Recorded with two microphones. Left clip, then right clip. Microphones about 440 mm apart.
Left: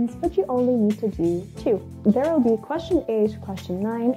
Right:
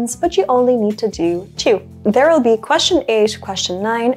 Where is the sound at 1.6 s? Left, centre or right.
Centre.